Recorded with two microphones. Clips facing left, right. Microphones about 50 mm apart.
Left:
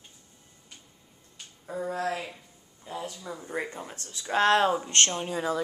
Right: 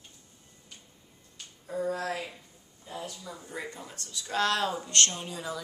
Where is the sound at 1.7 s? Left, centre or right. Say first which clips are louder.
Left 1 dB; centre.